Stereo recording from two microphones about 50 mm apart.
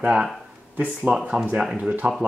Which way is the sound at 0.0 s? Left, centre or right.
Right.